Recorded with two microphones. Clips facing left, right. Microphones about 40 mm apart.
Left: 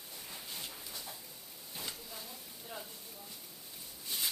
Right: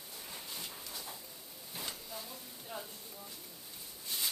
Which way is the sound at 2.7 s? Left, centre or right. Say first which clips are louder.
Right 2 dB; centre.